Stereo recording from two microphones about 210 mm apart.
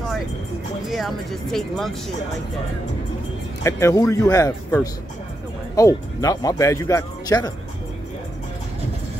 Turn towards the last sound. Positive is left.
turn(degrees=20)  # may be behind; listen again after turning